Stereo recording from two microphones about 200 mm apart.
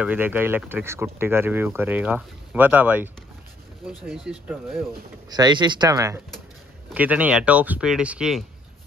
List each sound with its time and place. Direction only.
0.0 s speech: 10° right (ahead or behind)
5.3 s speech: 20° right (ahead or behind); by 8.5 s 5° right (ahead or behind)